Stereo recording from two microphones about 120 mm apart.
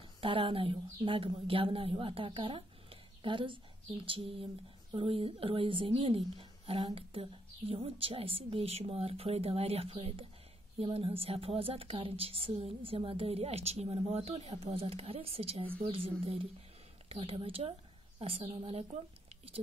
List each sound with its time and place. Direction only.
0.2 s speech: 45° right (ahead or behind)